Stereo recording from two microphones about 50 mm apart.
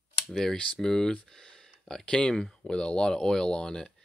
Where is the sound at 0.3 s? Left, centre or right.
Centre.